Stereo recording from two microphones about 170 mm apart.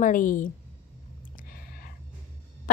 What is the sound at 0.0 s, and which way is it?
Speech, 50° left (ahead or behind).